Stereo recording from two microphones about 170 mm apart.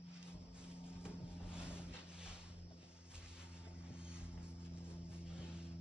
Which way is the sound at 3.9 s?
5° right (ahead or behind).